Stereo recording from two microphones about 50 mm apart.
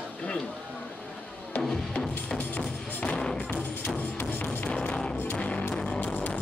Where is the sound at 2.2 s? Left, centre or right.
Left.